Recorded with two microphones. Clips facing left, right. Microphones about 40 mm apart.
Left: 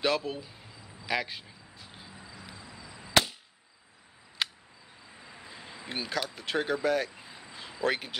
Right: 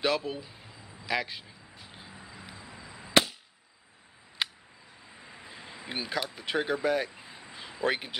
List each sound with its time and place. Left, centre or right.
0.0 s speech: centre
0.7 s a sound: right
1.0 s speech: centre
1.9 s vehicle: centre
2.4 s vehicle: right
4.4 s a sound: centre
5.1 s vehicle: centre
5.8 s speech: centre
7.2 s a sound: centre
7.7 s speech: centre